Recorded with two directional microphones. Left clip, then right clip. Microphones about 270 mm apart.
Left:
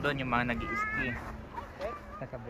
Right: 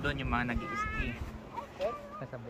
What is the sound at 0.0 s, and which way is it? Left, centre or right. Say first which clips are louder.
Speech: left 3 dB; centre.